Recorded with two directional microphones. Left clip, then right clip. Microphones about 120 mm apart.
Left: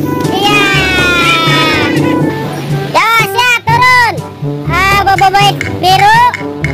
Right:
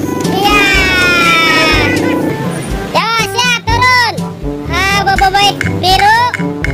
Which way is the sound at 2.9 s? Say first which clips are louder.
Left 4 dB; 25° left (ahead or behind).